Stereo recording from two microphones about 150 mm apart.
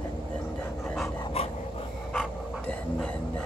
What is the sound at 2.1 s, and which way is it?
Dog, 5° left (ahead or behind).